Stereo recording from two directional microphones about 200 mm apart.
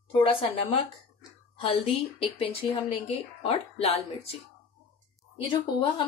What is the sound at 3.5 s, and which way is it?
Speech, 30° left (ahead or behind).